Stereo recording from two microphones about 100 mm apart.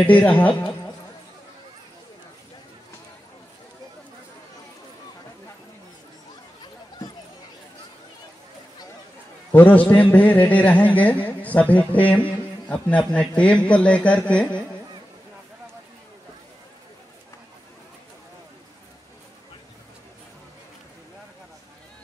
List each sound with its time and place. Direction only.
0.0 s speech: 15° left (ahead or behind)
9.5 s a man's voice: 20° left (ahead or behind)